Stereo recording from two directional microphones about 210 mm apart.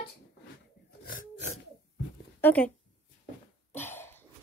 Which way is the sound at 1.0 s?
35° left (ahead or behind).